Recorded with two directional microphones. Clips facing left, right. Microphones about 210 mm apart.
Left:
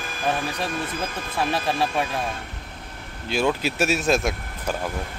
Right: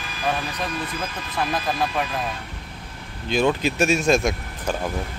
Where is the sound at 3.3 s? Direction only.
5° left (ahead or behind).